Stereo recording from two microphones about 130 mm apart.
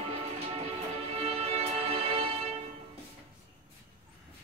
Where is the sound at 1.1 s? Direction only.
50° right (ahead or behind).